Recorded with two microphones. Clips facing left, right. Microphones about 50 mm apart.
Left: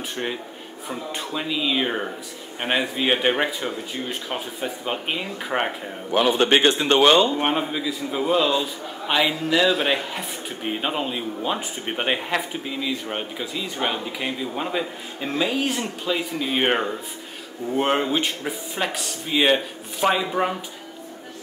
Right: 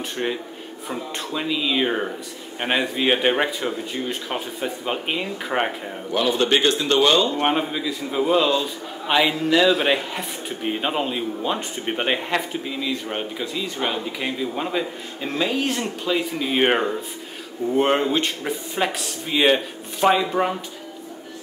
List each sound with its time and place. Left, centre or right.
0.1 s speech: centre
6.1 s a man's voice: left
7.4 s speech: centre